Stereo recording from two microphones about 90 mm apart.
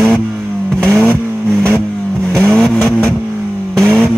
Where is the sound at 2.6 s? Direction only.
Centre (ahead or behind).